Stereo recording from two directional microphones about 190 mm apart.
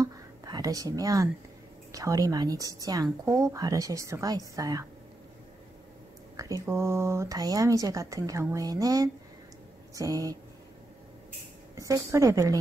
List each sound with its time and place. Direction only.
0.0 s a sound: 20° right (ahead or behind)
1.9 s speech: 20° right (ahead or behind)
6.3 s speech: 15° right (ahead or behind)
11.7 s speech: 15° right (ahead or behind)